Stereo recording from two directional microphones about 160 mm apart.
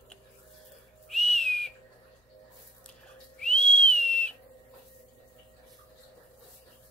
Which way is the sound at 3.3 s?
5° left (ahead or behind).